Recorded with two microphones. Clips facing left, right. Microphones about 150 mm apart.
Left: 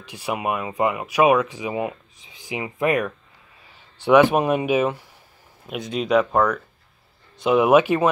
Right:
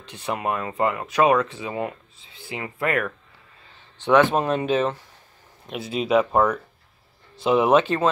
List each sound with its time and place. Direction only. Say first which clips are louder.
0.0 s speech: left 1 dB; 10° left (ahead or behind)
5.7 s speech: left 1 dB; 5° right (ahead or behind); by 8.1 s 10° left (ahead or behind)